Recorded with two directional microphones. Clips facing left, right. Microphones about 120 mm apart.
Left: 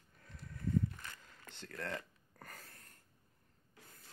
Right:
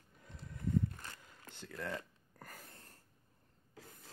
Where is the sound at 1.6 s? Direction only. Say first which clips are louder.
Right 1 dB; 5° right (ahead or behind).